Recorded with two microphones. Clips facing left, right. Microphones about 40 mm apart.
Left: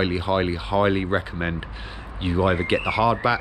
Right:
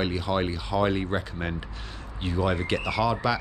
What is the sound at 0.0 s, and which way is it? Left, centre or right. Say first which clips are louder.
Speech: left 4 dB; left.